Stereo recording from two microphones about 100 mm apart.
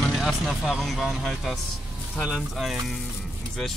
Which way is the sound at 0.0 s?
5° left (ahead or behind).